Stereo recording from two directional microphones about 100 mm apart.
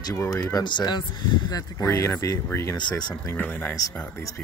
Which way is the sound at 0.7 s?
50° left (ahead or behind).